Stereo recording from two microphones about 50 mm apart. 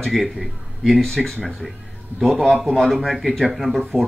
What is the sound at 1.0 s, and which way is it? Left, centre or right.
Speech, centre.